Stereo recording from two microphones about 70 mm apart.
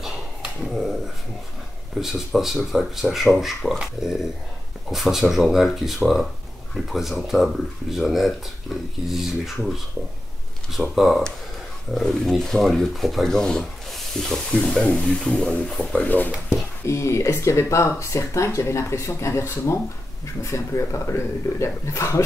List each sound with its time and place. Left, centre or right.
0.0 s dog: centre
2.0 s speech: centre
10.7 s speech: centre
16.0 s speech: left
16.8 s speech: left